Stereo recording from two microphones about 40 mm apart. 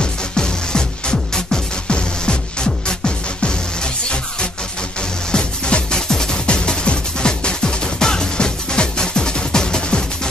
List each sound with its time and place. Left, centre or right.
0.0 s music: centre